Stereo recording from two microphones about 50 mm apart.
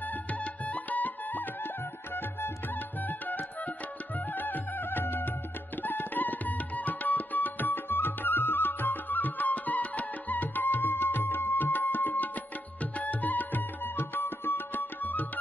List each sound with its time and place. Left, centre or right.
0.3 s music: left
3.1 s music: left
5.8 s tabla: left
12.9 s music: left